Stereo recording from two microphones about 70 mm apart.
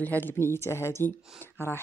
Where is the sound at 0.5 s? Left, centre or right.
Left.